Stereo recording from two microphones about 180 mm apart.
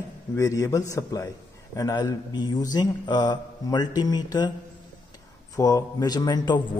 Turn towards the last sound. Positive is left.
turn(degrees=25)  # may be behind; listen again after turning